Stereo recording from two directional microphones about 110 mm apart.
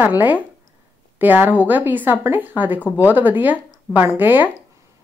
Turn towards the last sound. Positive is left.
turn(degrees=-15)  # may be behind; listen again after turning